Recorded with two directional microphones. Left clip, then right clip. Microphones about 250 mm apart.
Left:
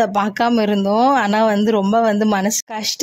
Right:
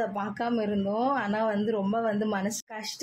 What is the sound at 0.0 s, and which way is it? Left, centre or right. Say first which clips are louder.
A man's voice: left 14 dB; left.